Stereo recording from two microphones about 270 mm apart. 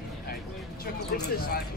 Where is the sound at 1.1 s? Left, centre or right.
Left.